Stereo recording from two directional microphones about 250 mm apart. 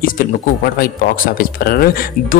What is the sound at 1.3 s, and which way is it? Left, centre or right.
A man's voice, left.